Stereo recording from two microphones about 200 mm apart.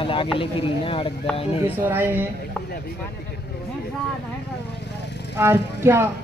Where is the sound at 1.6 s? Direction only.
10° right (ahead or behind).